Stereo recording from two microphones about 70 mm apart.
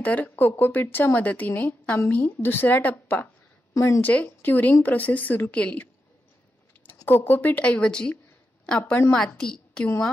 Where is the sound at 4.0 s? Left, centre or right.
Left.